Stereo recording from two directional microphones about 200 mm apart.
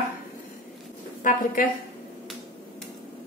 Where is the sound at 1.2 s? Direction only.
40° left (ahead or behind).